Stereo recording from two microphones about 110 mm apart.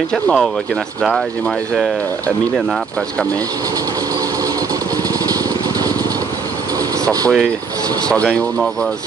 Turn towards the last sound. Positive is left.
turn(degrees=0)  # may be behind; listen again after turning